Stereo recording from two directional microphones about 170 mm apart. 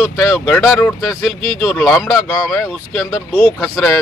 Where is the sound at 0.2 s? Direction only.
10° left (ahead or behind).